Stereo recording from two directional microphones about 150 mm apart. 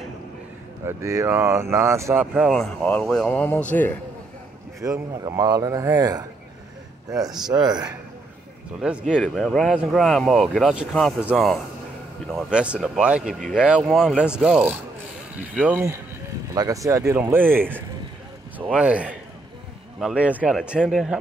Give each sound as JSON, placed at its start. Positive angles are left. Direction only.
{"t": 0.8, "sound": "speech", "side_deg": -20}
{"t": 2.3, "sound": "speech", "side_deg": 0}
{"t": 4.8, "sound": "speech", "side_deg": -20}
{"t": 9.2, "sound": "speech", "side_deg": 0}
{"t": 16.5, "sound": "speech", "side_deg": -25}